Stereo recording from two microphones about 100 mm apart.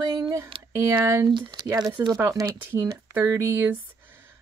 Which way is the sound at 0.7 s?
25° right (ahead or behind).